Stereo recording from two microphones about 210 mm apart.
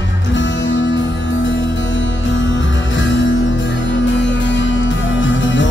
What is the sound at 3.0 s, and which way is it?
Music, 60° left (ahead or behind).